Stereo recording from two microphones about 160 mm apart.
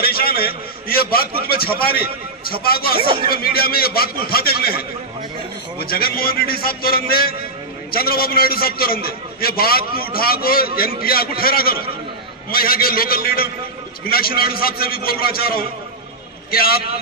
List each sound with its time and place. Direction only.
0.0 s a man's voice: 70° left (ahead or behind)